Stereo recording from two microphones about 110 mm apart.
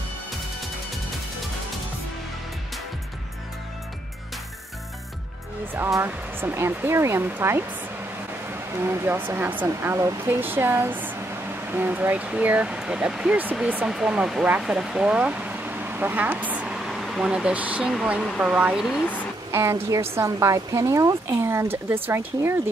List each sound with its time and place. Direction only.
5.8 s a woman's voice: 20° right (ahead or behind)
8.8 s a woman's voice: 20° right (ahead or behind)
19.5 s a woman's voice: 25° right (ahead or behind)